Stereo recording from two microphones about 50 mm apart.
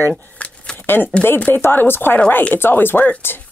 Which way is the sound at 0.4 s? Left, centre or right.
Left.